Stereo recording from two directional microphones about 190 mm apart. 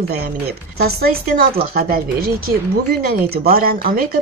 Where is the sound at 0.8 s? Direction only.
50° right (ahead or behind).